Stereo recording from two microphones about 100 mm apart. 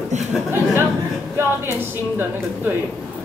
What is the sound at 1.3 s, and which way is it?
A woman's voice, 25° right (ahead or behind).